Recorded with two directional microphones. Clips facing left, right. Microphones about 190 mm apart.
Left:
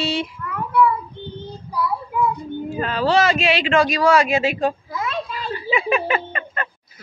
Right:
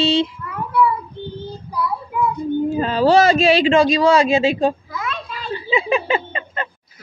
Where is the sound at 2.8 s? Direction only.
35° right (ahead or behind).